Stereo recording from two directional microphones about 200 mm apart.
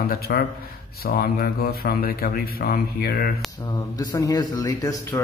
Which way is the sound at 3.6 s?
20° left (ahead or behind).